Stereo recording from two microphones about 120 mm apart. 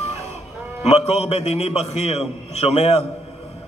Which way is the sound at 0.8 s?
60° left (ahead or behind).